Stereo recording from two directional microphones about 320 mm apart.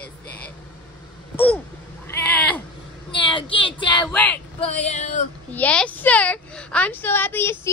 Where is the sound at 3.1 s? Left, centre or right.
Centre.